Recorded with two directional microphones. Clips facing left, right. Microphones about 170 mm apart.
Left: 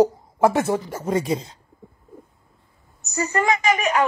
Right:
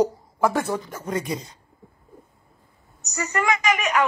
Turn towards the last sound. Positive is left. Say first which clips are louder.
# left 2 dB
turn(degrees=35)  # may be behind; listen again after turning